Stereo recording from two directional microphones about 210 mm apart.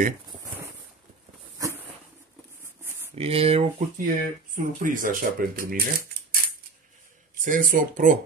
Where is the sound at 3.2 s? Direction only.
30° right (ahead or behind).